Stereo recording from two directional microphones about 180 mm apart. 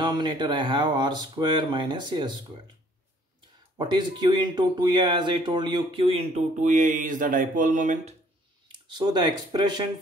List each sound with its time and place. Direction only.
0.0 s speech: 25° right (ahead or behind)
3.7 s speech: 25° right (ahead or behind); by 8.1 s 45° right (ahead or behind)
8.7 s speech: 25° right (ahead or behind)